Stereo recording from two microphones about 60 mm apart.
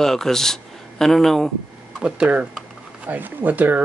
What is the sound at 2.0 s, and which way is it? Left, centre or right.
Speech, centre.